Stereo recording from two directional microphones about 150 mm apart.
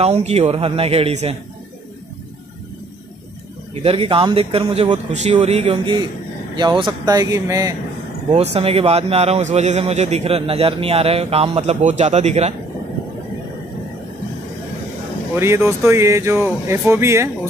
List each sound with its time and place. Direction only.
0.0 s a man's voice: 45° right (ahead or behind)
3.8 s a man's voice: 35° right (ahead or behind)
6.5 s speech: 30° right (ahead or behind)
8.3 s a man's voice: 40° right (ahead or behind)
15.3 s speech: 15° right (ahead or behind)